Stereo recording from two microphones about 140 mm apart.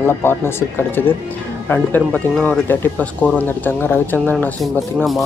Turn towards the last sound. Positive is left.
turn(degrees=15)  # may be behind; listen again after turning